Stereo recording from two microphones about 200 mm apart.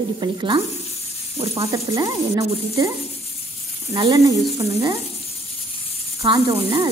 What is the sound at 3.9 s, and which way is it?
Speech, 20° right (ahead or behind).